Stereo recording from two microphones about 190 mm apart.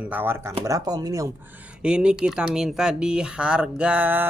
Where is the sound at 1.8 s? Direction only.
5° right (ahead or behind).